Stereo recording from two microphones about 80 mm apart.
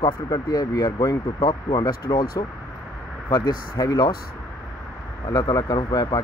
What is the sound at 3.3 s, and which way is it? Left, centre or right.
Speech, left.